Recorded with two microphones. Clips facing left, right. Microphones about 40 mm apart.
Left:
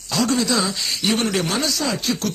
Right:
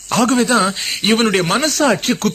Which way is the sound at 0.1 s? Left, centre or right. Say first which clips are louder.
Right 6 dB; right.